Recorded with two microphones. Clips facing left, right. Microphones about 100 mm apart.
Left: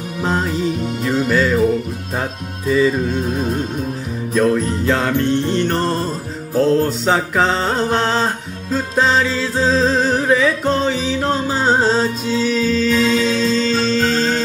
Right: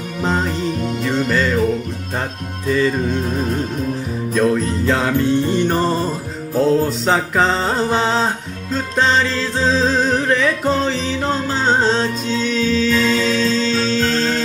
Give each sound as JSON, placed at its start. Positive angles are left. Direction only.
{"t": 0.2, "sound": "music", "side_deg": 0}
{"t": 2.7, "sound": "music", "side_deg": 5}
{"t": 4.3, "sound": "jingle bell", "side_deg": 0}
{"t": 8.7, "sound": "music", "side_deg": 5}